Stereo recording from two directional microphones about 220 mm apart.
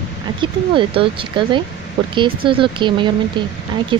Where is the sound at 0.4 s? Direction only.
20° right (ahead or behind).